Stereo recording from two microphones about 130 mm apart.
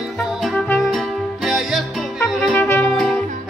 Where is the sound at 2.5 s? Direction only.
20° left (ahead or behind).